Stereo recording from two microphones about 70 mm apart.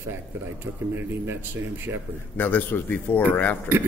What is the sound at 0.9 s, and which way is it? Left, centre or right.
A man's voice, right.